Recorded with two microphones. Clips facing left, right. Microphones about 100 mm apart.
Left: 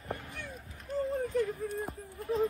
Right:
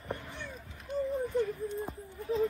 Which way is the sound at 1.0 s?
90° left.